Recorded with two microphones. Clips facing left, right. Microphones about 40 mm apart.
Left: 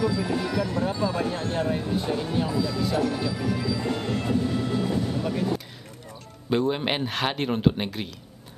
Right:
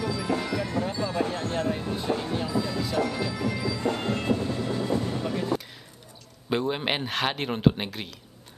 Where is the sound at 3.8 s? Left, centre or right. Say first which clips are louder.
Even; right.